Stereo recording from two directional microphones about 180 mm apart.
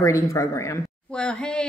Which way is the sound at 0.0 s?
15° left (ahead or behind).